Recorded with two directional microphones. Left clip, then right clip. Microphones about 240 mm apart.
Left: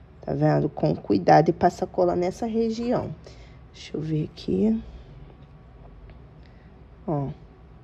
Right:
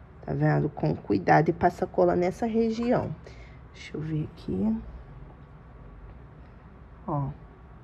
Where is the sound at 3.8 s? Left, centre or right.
Centre.